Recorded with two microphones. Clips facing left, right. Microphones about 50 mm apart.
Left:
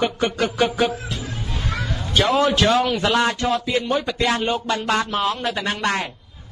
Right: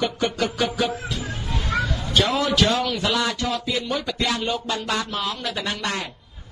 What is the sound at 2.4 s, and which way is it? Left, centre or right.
A man's voice, left.